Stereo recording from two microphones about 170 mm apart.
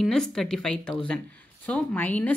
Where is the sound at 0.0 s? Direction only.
Centre (ahead or behind).